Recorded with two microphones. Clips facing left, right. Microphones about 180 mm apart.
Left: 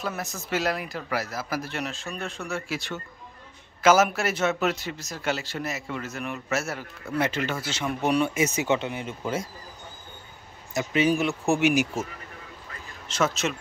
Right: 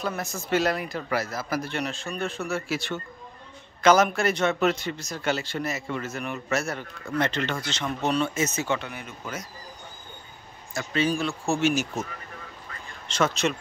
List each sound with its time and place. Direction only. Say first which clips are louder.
0.0 s speech: right 2 dB; centre (ahead or behind); by 9.5 s 25° left (ahead or behind)
10.7 s speech: left 3 dB; 15° left (ahead or behind)
13.1 s speech: right 1 dB; 5° left (ahead or behind)